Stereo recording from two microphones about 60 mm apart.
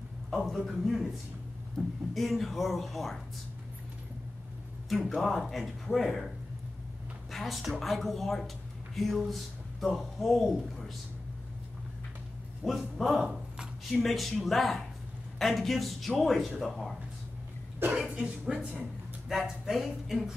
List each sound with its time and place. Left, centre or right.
0.4 s speech: centre
2.1 s speech: centre
5.1 s a woman's voice: centre
12.6 s speech: centre
17.9 s speech: centre
19.3 s speech: centre